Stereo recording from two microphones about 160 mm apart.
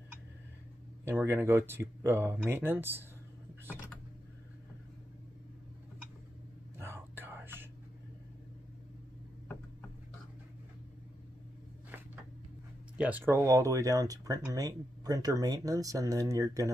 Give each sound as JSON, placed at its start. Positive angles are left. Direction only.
{"t": 1.0, "sound": "speech", "side_deg": -15}
{"t": 6.8, "sound": "whispering", "side_deg": -15}
{"t": 12.9, "sound": "speech", "side_deg": -10}